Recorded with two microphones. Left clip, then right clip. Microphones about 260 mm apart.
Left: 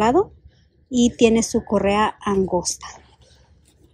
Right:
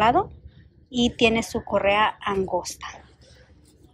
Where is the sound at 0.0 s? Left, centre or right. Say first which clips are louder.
Left 2 dB; left.